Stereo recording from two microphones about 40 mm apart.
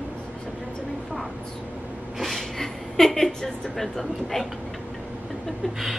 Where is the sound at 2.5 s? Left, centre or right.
Centre.